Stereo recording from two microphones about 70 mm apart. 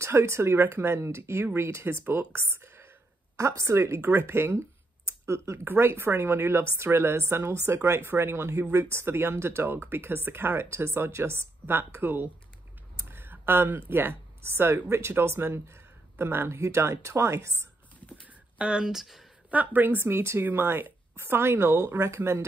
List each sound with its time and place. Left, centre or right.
0.0 s a woman's voice: right
18.2 s speech: centre
19.5 s a woman's voice: right